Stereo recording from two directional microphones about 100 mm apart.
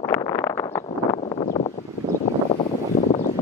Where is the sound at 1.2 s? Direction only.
65° left (ahead or behind).